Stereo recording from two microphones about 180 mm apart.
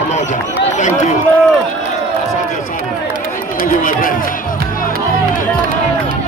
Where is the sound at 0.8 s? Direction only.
40° left (ahead or behind).